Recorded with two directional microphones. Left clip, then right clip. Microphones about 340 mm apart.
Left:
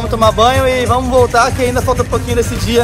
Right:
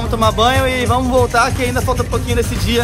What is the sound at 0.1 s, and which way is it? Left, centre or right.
Speech, centre.